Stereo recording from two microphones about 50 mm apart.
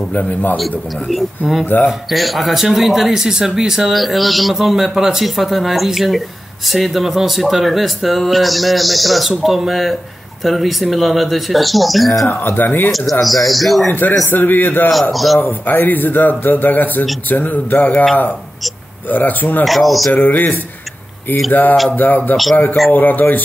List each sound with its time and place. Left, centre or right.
0.6 s speech: centre
12.4 s speech: left
13.2 s speech: centre
14.3 s speech: left
14.9 s speech: centre
15.6 s speech: left
19.0 s speech: left
19.6 s speech: centre
20.1 s speech: left